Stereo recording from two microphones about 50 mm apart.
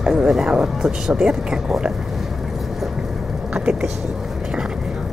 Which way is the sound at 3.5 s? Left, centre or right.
Centre.